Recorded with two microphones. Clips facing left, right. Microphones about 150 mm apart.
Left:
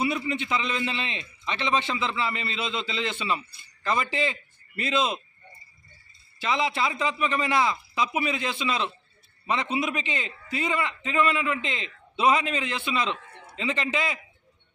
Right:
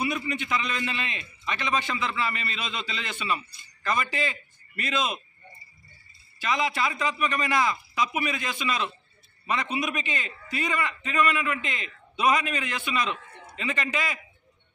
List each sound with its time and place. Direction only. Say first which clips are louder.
0.0 s a man's voice: left 2 dB; 25° left (ahead or behind)
6.4 s a man's voice: left 1 dB; 25° left (ahead or behind)